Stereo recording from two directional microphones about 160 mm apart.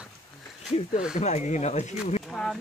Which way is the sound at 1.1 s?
45° left (ahead or behind).